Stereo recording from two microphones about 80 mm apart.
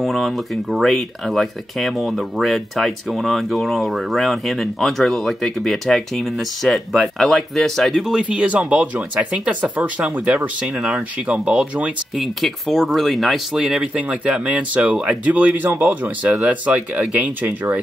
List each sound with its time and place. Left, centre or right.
0.0 s speech: centre
12.2 s speech: centre
13.6 s speech: centre